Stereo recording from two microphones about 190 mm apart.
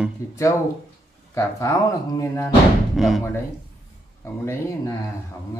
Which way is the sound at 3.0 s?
Centre (ahead or behind).